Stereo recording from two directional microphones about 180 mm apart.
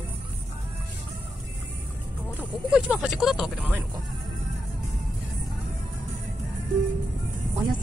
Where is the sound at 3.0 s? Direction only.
Centre (ahead or behind).